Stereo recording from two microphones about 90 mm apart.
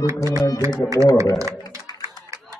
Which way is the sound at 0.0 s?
35° right (ahead or behind).